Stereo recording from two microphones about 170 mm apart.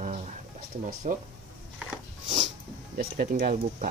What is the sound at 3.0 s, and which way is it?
Speech, 65° right (ahead or behind).